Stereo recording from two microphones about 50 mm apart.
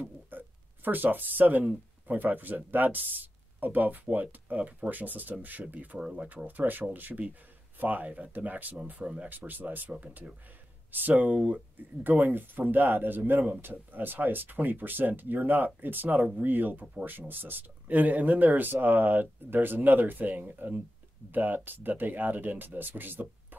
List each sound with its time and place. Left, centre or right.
0.0 s a sound: right
2.0 s speech: right
5.9 s speech: centre
6.2 s speech: right
9.3 s speech: right